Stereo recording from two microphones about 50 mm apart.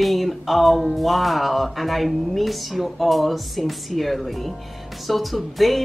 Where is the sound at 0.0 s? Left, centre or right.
Centre.